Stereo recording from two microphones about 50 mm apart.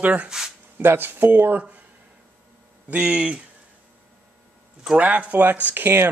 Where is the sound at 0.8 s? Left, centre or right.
Right.